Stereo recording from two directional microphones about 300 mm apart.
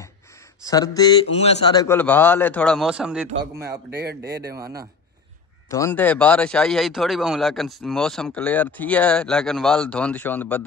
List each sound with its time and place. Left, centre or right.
0.7 s a man's voice: centre
3.9 s speech: right
4.5 s speech: centre
5.7 s a man's voice: centre